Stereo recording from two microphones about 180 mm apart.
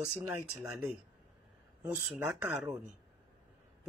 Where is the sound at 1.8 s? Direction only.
10° right (ahead or behind).